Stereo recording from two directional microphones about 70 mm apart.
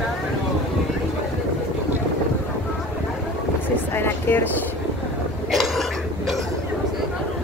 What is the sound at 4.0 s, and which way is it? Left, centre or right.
Vehicle, left.